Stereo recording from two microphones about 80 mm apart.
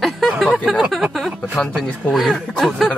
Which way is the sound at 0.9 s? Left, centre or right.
Centre.